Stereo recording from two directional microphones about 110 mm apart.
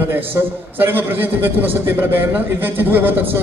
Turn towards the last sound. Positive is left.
turn(degrees=-20)  # may be behind; listen again after turning